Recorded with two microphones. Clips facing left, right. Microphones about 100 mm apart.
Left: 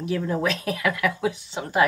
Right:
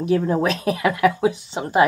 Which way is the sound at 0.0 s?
30° right (ahead or behind).